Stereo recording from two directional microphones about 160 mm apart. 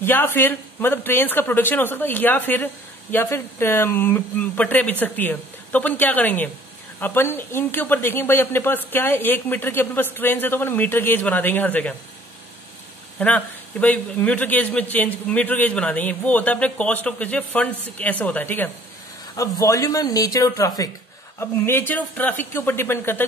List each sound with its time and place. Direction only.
0.0 s speech: 15° left (ahead or behind)
13.2 s speech: 10° left (ahead or behind)